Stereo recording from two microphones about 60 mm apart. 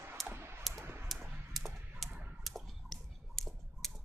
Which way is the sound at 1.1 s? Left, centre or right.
Centre.